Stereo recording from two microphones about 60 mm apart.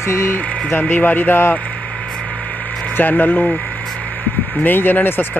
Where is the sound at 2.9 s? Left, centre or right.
Left.